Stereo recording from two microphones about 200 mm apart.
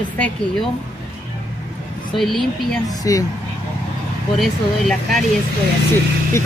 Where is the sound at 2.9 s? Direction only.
20° left (ahead or behind).